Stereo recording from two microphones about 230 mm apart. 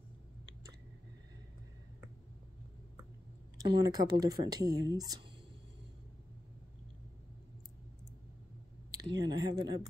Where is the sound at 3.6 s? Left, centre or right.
Centre.